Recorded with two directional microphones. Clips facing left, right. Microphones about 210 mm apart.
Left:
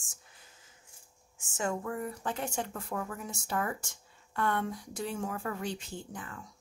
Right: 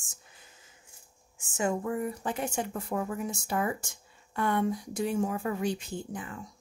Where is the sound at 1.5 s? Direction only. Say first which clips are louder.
Right 4 dB; 15° right (ahead or behind).